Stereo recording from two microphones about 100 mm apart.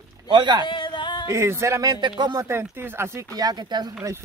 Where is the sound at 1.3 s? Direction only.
30° right (ahead or behind); by 2.4 s 45° right (ahead or behind).